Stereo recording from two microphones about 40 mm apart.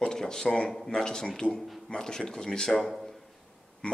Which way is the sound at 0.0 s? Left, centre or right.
Centre.